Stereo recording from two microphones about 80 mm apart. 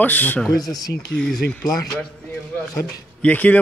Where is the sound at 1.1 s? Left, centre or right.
Centre.